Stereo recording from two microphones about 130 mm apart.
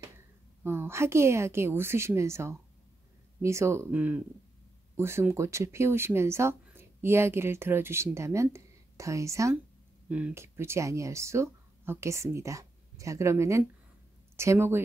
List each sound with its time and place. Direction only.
0.7 s speech: 20° right (ahead or behind)
10.0 s speech: 10° right (ahead or behind)